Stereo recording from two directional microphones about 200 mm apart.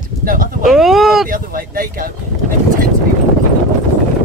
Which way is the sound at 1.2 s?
45° right (ahead or behind).